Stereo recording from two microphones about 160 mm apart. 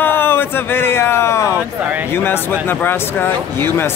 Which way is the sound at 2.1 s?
15° left (ahead or behind).